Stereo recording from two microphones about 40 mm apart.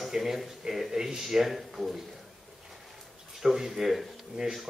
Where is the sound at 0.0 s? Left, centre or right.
Centre.